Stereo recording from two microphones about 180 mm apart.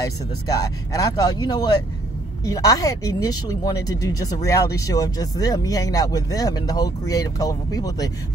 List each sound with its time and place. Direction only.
0.0 s speech: 20° left (ahead or behind)